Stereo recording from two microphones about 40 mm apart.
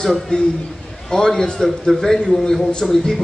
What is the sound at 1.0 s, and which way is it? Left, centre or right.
Speech, centre.